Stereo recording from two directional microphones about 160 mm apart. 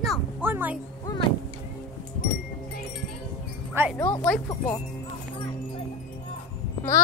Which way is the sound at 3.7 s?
10° right (ahead or behind).